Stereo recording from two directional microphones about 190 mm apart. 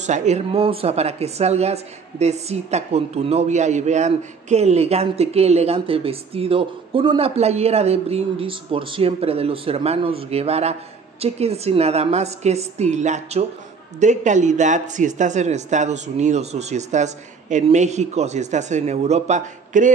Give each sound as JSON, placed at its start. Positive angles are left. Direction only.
{"t": 0.0, "sound": "a woman's voice", "side_deg": -40}